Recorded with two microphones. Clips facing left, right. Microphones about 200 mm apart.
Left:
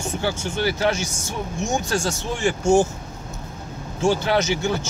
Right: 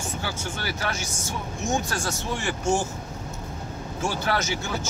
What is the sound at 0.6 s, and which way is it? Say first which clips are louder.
Speech: left 11 dB; 20° left (ahead or behind).